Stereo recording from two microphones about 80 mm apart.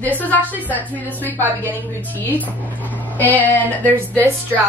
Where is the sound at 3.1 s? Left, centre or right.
Left.